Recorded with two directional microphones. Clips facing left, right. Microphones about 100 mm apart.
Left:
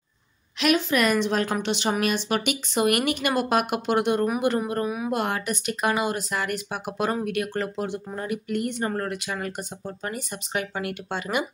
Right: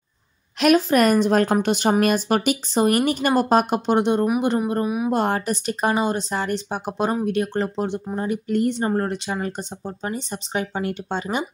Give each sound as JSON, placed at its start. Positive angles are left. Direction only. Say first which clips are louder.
{"t": 0.6, "sound": "a woman's voice", "louder": "right 5 dB", "side_deg": -40}
{"t": 5.1, "sound": "a woman's voice", "louder": "right 5 dB", "side_deg": -35}